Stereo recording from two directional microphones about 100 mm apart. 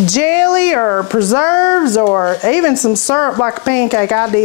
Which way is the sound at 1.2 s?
20° left (ahead or behind).